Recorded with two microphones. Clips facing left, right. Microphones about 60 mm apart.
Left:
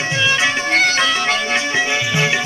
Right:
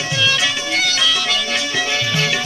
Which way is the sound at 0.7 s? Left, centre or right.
Left.